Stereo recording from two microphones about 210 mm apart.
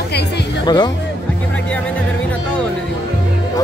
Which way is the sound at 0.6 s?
20° left (ahead or behind).